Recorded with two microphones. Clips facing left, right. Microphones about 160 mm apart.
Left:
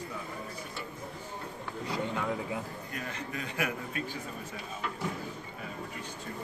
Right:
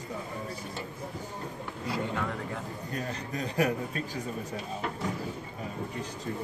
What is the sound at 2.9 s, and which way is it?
A man's voice, 35° right (ahead or behind).